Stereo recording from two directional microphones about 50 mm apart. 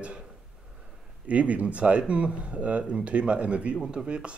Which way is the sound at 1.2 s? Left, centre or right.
Right.